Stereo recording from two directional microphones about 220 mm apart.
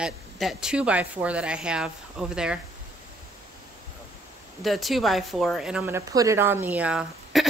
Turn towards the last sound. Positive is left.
turn(degrees=-5)  # may be behind; listen again after turning